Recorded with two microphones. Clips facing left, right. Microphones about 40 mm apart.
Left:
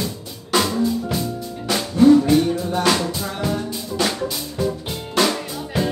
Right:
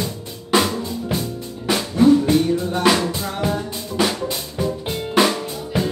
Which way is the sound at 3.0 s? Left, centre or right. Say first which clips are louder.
Right 1 dB; right.